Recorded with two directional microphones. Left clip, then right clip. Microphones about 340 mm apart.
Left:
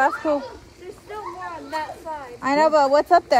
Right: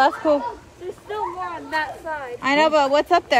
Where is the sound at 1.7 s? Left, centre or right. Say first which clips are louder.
Right 4 dB; right.